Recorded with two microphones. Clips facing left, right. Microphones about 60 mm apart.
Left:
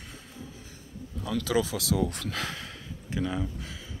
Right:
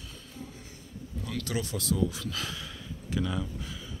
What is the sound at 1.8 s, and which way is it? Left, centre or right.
Speech, left.